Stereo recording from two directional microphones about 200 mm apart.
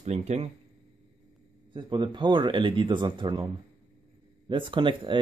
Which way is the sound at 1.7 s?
25° right (ahead or behind).